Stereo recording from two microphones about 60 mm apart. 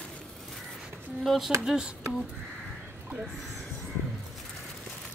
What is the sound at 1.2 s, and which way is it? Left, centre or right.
Speech, centre.